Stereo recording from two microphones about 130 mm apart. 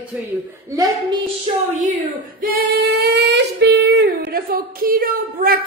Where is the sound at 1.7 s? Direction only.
85° right.